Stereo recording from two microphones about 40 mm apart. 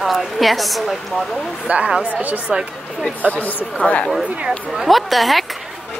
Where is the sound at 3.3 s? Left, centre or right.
Left.